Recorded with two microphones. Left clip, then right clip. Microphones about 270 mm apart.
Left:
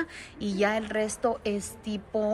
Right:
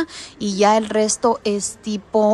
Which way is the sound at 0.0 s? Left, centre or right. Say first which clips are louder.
Right 8 dB; centre.